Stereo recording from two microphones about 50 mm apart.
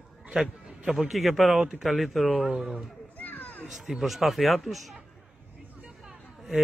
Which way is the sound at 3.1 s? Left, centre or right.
Left.